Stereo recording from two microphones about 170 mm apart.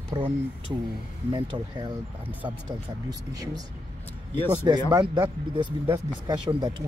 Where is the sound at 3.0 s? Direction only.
20° right (ahead or behind).